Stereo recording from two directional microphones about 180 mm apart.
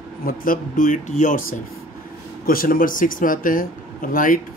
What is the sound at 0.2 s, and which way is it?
Speech, 50° left (ahead or behind).